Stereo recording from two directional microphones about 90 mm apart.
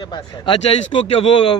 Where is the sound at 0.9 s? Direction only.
85° left.